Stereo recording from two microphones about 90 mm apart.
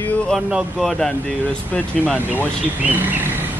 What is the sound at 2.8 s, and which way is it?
Speech, 20° right (ahead or behind).